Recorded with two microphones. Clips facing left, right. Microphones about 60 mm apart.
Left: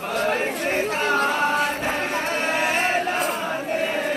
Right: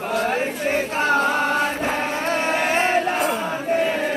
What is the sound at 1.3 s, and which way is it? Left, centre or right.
Music, right.